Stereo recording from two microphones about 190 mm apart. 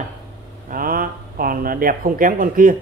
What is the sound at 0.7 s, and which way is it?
Speech, 50° right (ahead or behind).